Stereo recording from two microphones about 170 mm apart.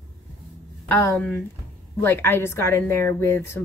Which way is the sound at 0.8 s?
10° left (ahead or behind).